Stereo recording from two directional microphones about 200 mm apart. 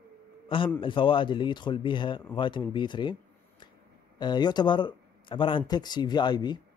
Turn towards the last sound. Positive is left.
turn(degrees=20)  # may be behind; listen again after turning